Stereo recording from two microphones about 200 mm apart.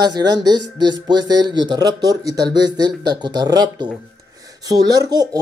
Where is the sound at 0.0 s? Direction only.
20° right (ahead or behind).